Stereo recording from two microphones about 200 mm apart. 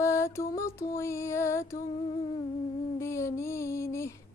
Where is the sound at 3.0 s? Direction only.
15° left (ahead or behind).